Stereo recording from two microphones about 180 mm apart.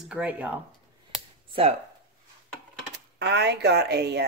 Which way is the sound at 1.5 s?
35° right (ahead or behind).